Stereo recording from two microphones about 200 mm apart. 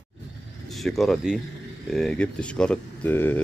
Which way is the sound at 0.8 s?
Centre (ahead or behind).